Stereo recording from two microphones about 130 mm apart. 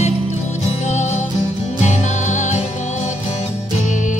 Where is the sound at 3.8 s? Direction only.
75° left (ahead or behind).